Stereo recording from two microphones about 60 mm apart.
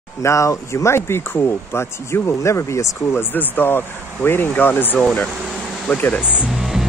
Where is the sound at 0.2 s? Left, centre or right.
Left.